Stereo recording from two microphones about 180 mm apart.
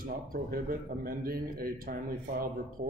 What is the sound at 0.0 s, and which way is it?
A man's voice, 55° right (ahead or behind).